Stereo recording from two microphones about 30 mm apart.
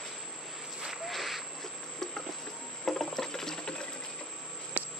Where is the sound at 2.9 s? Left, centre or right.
Centre.